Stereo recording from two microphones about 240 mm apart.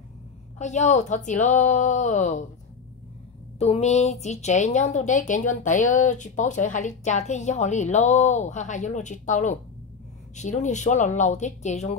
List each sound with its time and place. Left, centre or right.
0.6 s a woman's voice: left
3.5 s a woman's voice: left